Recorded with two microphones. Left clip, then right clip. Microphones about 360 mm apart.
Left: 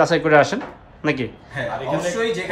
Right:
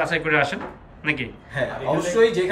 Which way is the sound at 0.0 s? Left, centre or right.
Centre.